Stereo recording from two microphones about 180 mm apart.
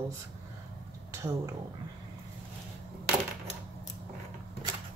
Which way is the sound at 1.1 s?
15° right (ahead or behind).